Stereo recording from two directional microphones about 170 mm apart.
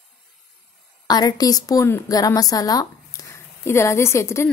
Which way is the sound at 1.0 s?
25° left (ahead or behind).